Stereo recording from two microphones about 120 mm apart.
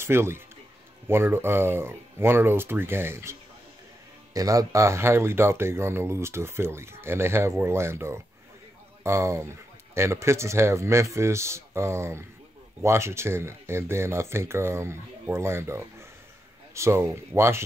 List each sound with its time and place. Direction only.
0.0 s speech: 20° right (ahead or behind)